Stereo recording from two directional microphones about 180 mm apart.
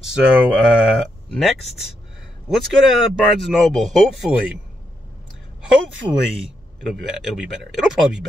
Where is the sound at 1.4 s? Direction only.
Centre (ahead or behind).